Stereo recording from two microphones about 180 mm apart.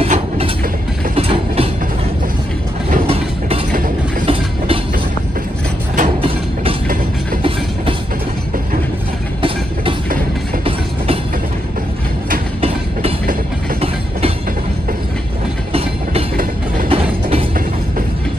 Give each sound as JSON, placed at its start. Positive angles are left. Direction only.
{"t": 0.0, "sound": "vehicle", "side_deg": -30}
{"t": 1.1, "sound": "train", "side_deg": -30}
{"t": 2.9, "sound": "train", "side_deg": -30}
{"t": 5.9, "sound": "a sound", "side_deg": -35}
{"t": 15.7, "sound": "train", "side_deg": -35}